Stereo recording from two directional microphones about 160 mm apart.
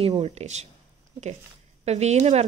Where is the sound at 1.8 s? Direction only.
45° right (ahead or behind).